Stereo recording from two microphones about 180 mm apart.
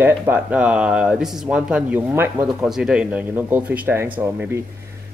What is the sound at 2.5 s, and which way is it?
Speech, centre (ahead or behind).